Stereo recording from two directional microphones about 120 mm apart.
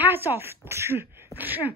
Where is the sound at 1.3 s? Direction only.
25° left (ahead or behind).